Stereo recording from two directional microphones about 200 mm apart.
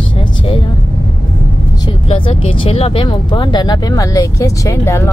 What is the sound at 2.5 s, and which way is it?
Speech, 30° left (ahead or behind).